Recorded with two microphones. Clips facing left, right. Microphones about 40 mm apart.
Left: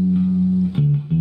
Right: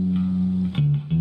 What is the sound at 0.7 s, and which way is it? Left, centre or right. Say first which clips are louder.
Music: left 3 dB; right.